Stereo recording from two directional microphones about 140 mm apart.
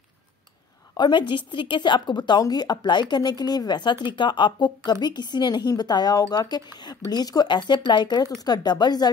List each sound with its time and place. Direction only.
0.9 s a woman's voice: 35° left (ahead or behind)